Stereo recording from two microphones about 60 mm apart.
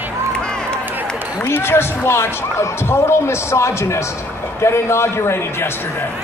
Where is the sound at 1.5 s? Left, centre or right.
Left.